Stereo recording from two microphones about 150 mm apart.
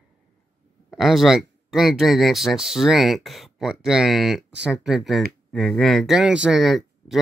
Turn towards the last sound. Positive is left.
turn(degrees=0)  # may be behind; listen again after turning